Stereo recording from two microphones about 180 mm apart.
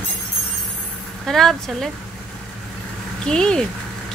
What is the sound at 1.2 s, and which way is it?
Speech, centre (ahead or behind).